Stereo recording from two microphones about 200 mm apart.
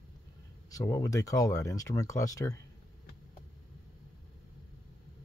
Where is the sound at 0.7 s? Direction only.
15° left (ahead or behind).